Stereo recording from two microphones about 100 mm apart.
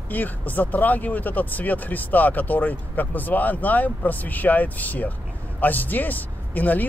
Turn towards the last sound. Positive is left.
turn(degrees=15)  # may be behind; listen again after turning